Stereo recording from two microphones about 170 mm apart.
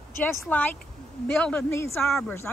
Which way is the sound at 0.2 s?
10° left (ahead or behind).